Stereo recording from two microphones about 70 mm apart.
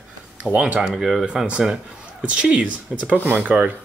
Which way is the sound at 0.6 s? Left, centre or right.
Centre.